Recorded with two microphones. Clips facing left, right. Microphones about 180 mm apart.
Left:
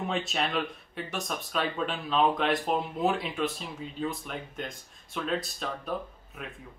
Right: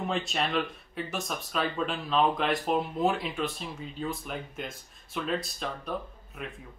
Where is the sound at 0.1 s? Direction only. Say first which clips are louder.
Right 1 dB; centre (ahead or behind).